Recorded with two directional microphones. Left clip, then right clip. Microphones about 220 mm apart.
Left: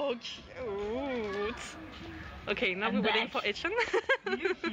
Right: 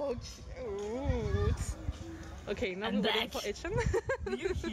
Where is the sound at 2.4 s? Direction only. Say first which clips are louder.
Left 5 dB; 5° right (ahead or behind).